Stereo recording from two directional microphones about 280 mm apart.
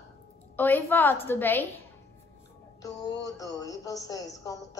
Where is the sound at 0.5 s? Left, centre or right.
Centre.